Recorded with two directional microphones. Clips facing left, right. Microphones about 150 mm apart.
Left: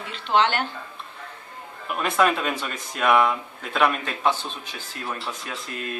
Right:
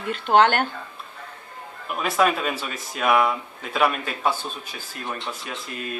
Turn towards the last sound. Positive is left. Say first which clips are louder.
# even
turn(degrees=-5)  # may be behind; listen again after turning